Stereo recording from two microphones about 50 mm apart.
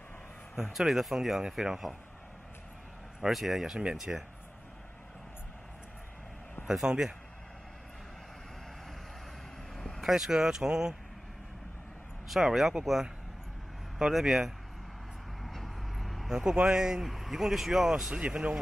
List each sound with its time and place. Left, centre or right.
0.7 s speech: centre
3.2 s speech: centre
6.7 s speech: centre
9.8 s vehicle: centre
10.0 s speech: centre
12.3 s speech: centre
15.4 s vehicle: centre
16.3 s speech: centre